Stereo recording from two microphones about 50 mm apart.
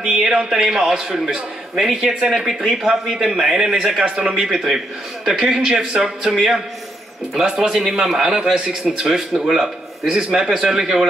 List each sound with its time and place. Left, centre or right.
0.0 s a man's voice: centre
9.0 s a man's voice: centre